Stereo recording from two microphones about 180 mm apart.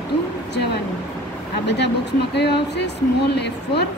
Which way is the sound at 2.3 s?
70° left (ahead or behind).